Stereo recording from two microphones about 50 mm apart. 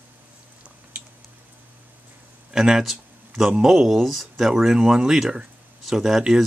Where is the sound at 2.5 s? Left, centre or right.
Centre.